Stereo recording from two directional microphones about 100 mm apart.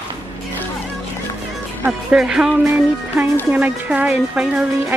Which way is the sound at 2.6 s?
20° right (ahead or behind).